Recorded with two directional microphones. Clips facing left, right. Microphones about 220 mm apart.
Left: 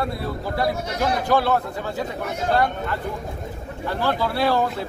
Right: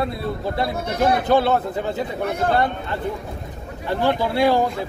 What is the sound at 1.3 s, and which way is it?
Speech, 25° right (ahead or behind).